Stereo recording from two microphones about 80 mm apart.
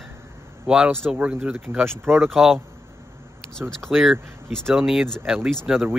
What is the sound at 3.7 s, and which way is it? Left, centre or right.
Speech, centre.